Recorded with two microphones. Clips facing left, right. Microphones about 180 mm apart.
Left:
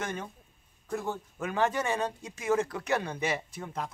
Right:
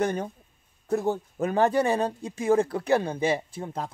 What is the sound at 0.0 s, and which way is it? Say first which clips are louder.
Speech: right 9 dB; 40° right (ahead or behind).